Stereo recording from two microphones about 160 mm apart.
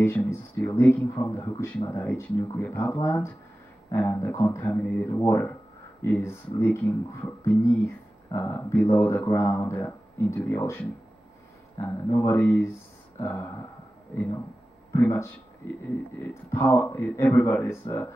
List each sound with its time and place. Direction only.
0.3 s speech: 15° left (ahead or behind)
15.0 s speech: 15° left (ahead or behind)